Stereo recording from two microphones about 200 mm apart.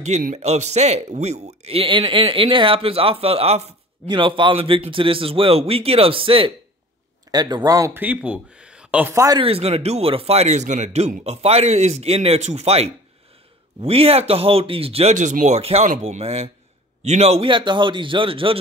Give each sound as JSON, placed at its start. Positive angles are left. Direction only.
{"t": 0.0, "sound": "speech", "side_deg": -35}
{"t": 9.4, "sound": "a man's voice", "side_deg": -30}